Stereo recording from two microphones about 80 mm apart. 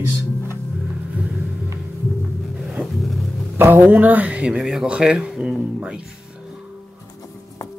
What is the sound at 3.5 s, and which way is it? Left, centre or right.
Speech, right.